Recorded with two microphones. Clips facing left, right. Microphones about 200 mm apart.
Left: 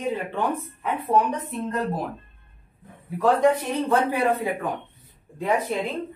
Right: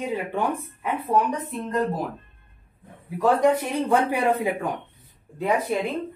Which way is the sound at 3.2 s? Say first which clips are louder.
Even; 10° right (ahead or behind).